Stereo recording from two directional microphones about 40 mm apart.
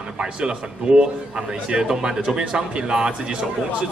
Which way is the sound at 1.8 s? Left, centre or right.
Centre.